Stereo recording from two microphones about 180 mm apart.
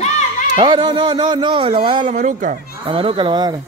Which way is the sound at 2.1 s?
45° right (ahead or behind).